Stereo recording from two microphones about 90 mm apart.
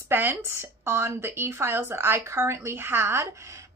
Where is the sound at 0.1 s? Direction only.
25° right (ahead or behind).